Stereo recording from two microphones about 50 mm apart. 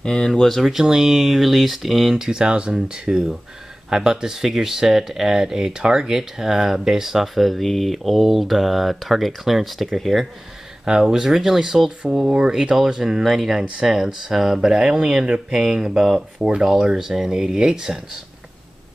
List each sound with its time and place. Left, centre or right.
0.0 s speech: centre
0.3 s speech: centre
0.7 s speech: centre
10.9 s speech: centre